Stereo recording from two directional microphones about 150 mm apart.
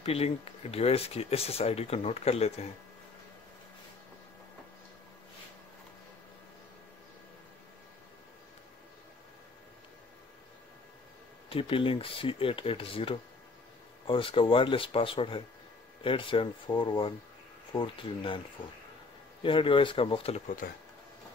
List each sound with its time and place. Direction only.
0.0 s speech: 40° left (ahead or behind)
11.4 s speech: 35° left (ahead or behind)
19.4 s speech: 35° left (ahead or behind)
20.4 s speech: 65° left (ahead or behind)